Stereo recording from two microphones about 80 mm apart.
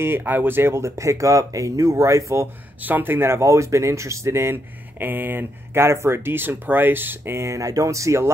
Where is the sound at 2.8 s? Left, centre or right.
Right.